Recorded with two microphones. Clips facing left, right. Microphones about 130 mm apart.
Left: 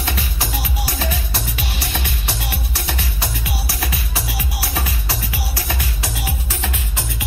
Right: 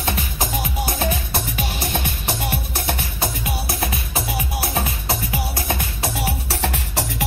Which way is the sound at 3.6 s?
25° right (ahead or behind).